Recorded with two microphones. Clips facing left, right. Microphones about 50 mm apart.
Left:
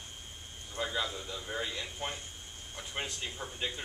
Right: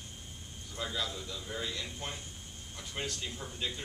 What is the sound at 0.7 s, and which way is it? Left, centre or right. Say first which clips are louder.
Speech: left 2 dB; left.